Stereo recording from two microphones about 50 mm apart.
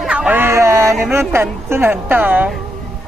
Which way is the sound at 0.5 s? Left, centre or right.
Right.